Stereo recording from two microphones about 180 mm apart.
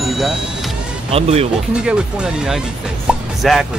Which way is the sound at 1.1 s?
35° right (ahead or behind).